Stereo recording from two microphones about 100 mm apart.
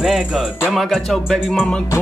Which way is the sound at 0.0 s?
5° right (ahead or behind).